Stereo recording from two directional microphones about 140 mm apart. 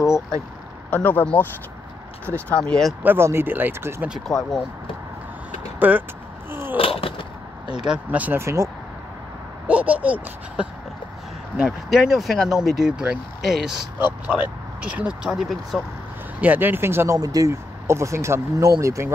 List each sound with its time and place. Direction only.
0.8 s speech: 10° left (ahead or behind)
3.0 s speech: 15° right (ahead or behind)
4.3 s speech: centre (ahead or behind)
5.8 s speech: 10° right (ahead or behind)
6.5 s a sound: 15° right (ahead or behind)
6.8 s a sound: 40° left (ahead or behind)
7.7 s speech: 5° right (ahead or behind)
9.7 s speech: 10° right (ahead or behind)
14.8 s speech: 10° right (ahead or behind)
16.3 s speech: 15° right (ahead or behind)